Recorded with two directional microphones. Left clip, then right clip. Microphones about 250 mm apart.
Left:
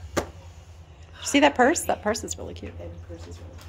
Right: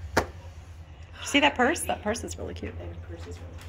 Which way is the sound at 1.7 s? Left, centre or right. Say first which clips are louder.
Left 4 dB; left.